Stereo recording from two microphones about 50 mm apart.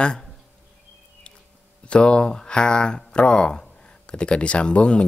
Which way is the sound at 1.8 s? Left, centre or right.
Left.